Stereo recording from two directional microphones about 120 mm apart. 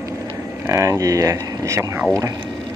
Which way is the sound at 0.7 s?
25° right (ahead or behind).